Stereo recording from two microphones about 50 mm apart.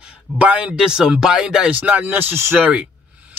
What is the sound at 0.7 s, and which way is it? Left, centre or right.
Speech, centre.